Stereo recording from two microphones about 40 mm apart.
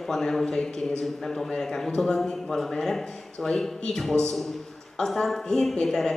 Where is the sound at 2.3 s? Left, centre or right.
Centre.